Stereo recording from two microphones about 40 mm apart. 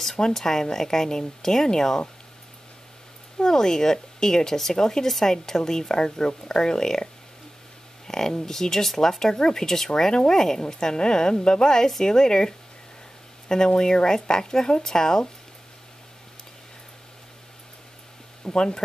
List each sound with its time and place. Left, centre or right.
0.0 s speech: centre
3.3 s speech: centre
8.1 s speech: centre
18.4 s speech: left